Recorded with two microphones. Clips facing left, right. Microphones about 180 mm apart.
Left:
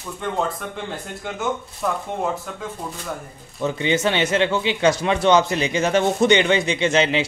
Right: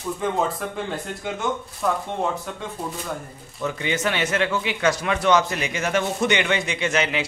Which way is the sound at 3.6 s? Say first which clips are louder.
Left 4 dB; 25° left (ahead or behind).